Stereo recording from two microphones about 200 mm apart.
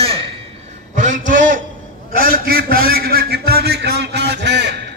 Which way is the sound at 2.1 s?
45° right (ahead or behind).